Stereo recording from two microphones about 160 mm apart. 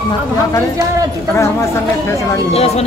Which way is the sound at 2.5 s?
40° left (ahead or behind).